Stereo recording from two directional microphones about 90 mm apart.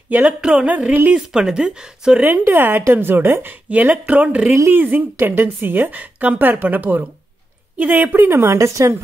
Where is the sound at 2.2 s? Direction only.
20° right (ahead or behind).